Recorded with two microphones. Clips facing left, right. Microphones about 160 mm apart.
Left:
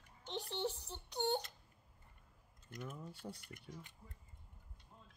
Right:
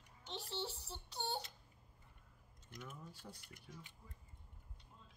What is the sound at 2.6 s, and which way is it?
Speech, 50° left (ahead or behind).